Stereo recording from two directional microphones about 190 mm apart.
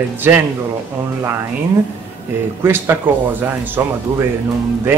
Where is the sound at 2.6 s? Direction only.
10° right (ahead or behind).